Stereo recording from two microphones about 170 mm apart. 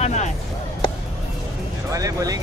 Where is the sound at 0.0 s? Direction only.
45° left (ahead or behind).